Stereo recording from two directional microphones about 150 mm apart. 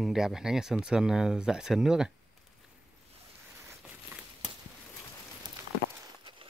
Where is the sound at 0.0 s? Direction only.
Centre (ahead or behind).